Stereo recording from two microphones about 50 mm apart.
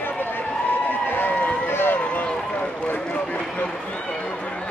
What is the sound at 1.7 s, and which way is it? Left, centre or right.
Run, left.